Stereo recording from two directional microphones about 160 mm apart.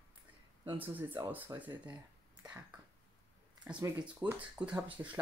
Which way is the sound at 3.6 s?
5° right (ahead or behind).